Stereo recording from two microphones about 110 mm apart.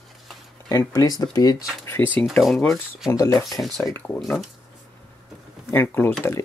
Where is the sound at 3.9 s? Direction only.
15° left (ahead or behind).